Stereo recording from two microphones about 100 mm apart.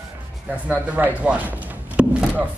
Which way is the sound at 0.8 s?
15° right (ahead or behind).